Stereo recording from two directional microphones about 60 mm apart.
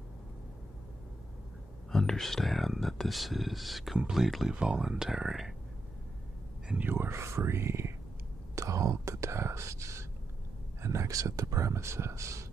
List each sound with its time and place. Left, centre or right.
1.9 s speech: centre
4.5 s speech: centre
6.8 s speech: right
8.5 s speech: right